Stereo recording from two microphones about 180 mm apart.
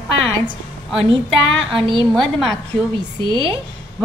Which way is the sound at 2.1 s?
Centre (ahead or behind).